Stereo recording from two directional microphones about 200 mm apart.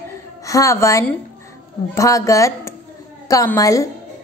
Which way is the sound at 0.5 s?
15° left (ahead or behind).